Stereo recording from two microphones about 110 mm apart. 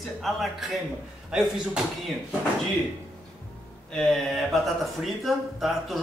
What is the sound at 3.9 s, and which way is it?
Speech, 5° left (ahead or behind).